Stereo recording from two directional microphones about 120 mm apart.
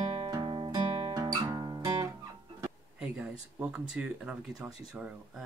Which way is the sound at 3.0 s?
10° right (ahead or behind).